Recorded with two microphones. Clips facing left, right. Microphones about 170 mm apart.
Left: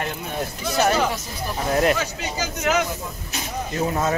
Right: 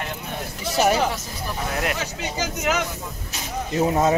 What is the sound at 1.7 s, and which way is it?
Speech, 35° left (ahead or behind).